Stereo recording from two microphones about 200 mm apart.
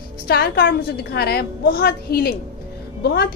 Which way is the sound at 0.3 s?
55° left (ahead or behind).